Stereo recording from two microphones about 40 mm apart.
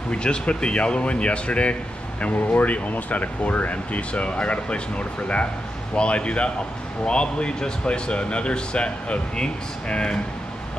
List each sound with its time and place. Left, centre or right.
0.1 s speech: left
2.2 s speech: left